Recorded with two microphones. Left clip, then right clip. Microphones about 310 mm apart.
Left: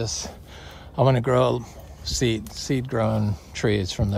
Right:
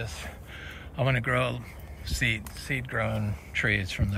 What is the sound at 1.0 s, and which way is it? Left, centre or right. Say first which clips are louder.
Speech: left 7 dB; centre.